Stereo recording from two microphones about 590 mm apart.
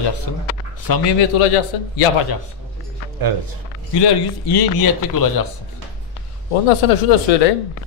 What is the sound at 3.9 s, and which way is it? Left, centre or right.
A man's voice, left.